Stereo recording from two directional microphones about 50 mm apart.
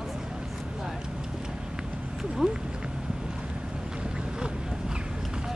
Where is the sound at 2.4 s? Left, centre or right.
Centre.